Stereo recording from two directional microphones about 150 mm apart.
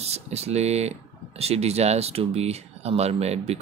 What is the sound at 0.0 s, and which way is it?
Speech, 45° right (ahead or behind).